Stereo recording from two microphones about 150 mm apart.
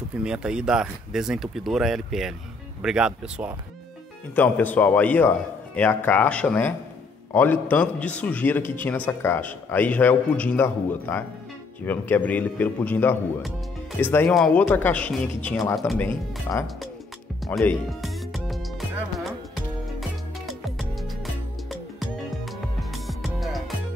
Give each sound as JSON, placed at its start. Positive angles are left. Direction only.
{"t": 0.2, "sound": "speech", "side_deg": -5}
{"t": 4.4, "sound": "a man's voice", "side_deg": 10}
{"t": 16.5, "sound": "speech", "side_deg": 25}
{"t": 17.6, "sound": "music", "side_deg": 0}
{"t": 20.0, "sound": "music", "side_deg": 0}